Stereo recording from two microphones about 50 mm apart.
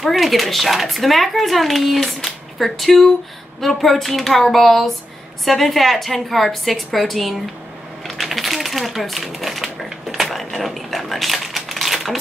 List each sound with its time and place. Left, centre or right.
0.0 s speech: centre
8.0 s typewriter: centre